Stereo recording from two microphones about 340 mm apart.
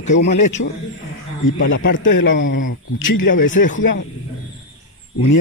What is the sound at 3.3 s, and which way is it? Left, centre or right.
Speech, left.